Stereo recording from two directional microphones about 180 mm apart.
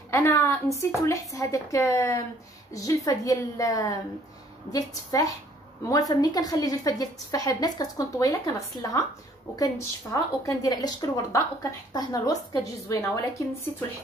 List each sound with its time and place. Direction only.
0.1 s a woman's voice: 15° left (ahead or behind)